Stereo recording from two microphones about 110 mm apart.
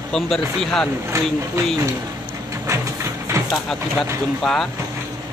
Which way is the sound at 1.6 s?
30° right (ahead or behind).